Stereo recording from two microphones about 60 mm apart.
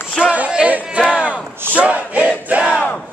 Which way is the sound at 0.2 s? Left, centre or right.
Centre.